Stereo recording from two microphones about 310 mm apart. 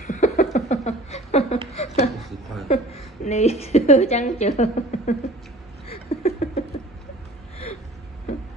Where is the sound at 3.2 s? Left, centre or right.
Left.